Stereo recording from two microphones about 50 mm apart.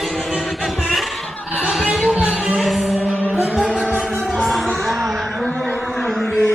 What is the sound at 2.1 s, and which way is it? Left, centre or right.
Music, right.